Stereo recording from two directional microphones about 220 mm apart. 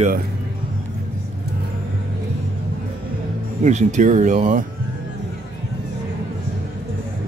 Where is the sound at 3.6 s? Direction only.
30° right (ahead or behind).